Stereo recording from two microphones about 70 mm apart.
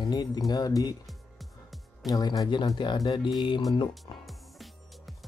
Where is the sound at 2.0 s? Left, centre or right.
Left.